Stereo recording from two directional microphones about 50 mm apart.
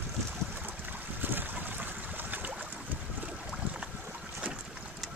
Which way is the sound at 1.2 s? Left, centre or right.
Right.